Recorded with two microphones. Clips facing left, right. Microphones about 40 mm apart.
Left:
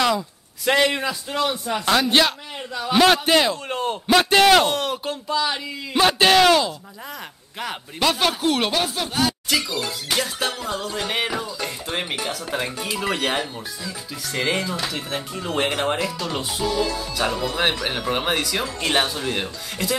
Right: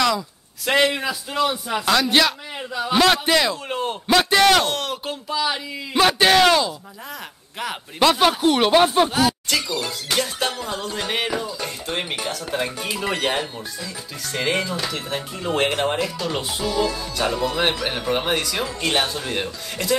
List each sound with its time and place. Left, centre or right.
0.7 s speech: centre
1.9 s speech: centre
3.3 s speech: centre
3.6 s speech: centre
4.3 s speech: centre
8.2 s speech: centre
8.7 s speech: right
9.1 s speech: centre